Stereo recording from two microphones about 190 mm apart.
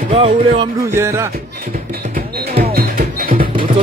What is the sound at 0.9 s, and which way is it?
Music, 15° right (ahead or behind).